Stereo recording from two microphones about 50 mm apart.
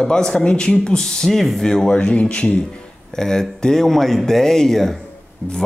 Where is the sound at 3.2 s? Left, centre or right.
Centre.